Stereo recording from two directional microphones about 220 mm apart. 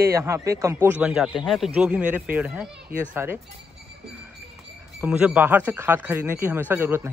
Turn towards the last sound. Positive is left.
turn(degrees=-10)  # may be behind; listen again after turning